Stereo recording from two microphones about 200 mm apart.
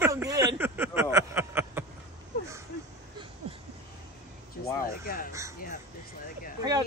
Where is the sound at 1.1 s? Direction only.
10° right (ahead or behind).